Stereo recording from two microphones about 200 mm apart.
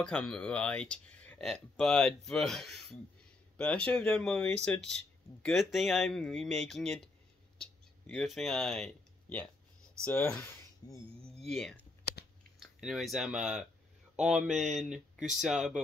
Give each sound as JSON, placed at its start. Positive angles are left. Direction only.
{"t": 0.0, "sound": "speech", "side_deg": 5}
{"t": 8.1, "sound": "speech", "side_deg": 0}
{"t": 10.8, "sound": "a sound", "side_deg": 20}
{"t": 11.4, "sound": "speech", "side_deg": 5}